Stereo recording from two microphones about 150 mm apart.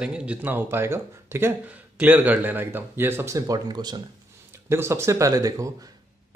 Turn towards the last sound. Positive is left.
turn(degrees=-20)  # may be behind; listen again after turning